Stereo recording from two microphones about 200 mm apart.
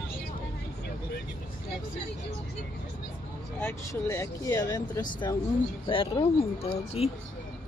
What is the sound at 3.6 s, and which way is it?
Speech, 15° left (ahead or behind).